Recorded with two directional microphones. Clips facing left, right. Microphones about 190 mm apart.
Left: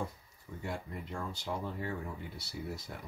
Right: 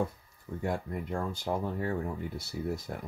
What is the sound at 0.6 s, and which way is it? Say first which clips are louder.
Speech: right 7 dB; 55° right (ahead or behind).